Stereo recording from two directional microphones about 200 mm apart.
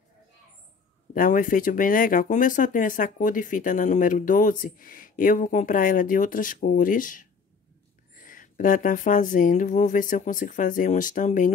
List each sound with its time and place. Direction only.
1.1 s speech: 45° left (ahead or behind)